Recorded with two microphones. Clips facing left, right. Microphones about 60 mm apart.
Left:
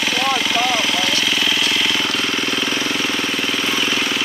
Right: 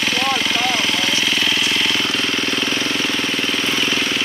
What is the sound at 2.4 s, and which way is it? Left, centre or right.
Vehicle, right.